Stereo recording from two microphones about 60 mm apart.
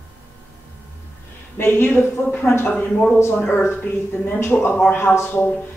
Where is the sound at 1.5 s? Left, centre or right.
Left.